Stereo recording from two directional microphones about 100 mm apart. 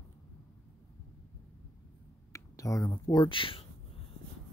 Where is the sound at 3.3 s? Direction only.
60° left (ahead or behind).